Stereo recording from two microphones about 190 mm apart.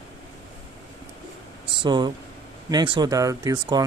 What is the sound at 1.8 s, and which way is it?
Speech, 25° right (ahead or behind).